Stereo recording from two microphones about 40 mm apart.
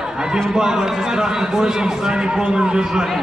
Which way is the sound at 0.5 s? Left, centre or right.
Centre.